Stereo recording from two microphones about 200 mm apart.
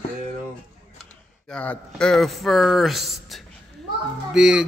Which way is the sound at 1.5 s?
5° left (ahead or behind).